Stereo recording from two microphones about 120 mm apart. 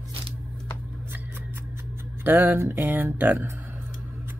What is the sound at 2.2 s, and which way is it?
Music, 15° right (ahead or behind).